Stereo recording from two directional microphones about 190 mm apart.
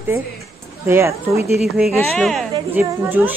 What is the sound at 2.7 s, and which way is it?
Speech, 10° right (ahead or behind).